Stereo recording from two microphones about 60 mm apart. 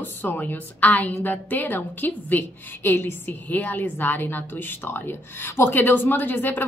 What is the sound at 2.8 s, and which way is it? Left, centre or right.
Speech, left.